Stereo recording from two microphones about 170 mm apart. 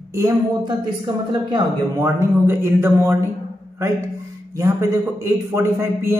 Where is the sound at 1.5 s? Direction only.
20° right (ahead or behind).